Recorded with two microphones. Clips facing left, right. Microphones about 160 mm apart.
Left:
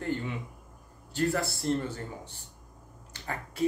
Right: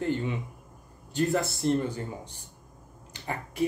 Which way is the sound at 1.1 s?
20° right (ahead or behind).